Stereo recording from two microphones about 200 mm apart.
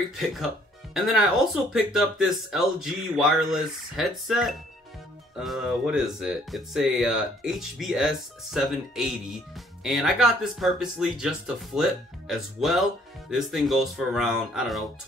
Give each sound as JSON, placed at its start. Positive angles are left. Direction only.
{"t": 0.2, "sound": "speech", "side_deg": 0}